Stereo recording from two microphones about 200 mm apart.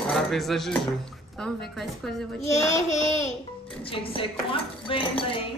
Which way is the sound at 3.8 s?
25° left (ahead or behind).